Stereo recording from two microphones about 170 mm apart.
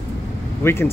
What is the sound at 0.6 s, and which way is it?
Speech, 15° left (ahead or behind).